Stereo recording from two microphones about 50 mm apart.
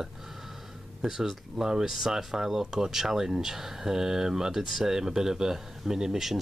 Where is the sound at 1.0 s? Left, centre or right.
Centre.